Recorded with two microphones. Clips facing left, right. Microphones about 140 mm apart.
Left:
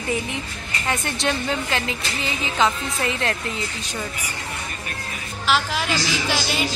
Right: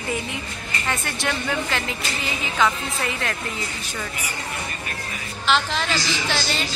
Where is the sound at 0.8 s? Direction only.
20° left (ahead or behind).